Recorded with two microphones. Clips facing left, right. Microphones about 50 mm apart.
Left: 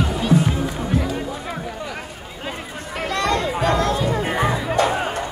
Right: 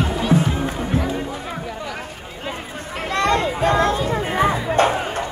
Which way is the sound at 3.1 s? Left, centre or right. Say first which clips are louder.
Right 2 dB; right.